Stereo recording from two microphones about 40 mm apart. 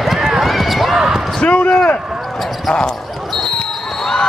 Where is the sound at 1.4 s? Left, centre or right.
Left.